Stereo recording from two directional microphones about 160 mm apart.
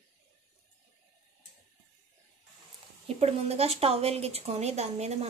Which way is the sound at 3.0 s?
40° right (ahead or behind).